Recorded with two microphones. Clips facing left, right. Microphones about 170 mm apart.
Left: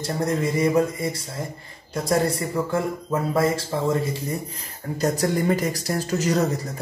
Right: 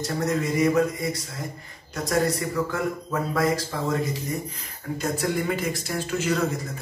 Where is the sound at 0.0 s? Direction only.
30° left (ahead or behind).